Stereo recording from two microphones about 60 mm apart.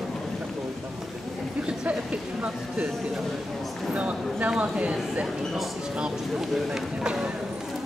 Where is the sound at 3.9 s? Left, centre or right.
Right.